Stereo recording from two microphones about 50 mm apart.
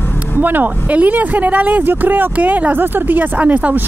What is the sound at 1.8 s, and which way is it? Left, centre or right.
Speech, right.